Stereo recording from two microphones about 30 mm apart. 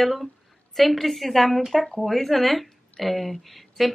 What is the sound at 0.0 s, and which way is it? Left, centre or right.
A woman's voice, centre.